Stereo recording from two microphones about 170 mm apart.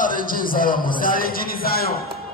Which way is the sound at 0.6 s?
55° left (ahead or behind).